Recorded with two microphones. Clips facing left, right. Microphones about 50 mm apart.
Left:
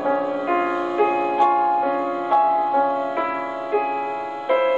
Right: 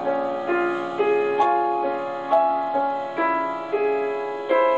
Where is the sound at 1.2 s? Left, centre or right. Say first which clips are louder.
Left 2 dB; centre.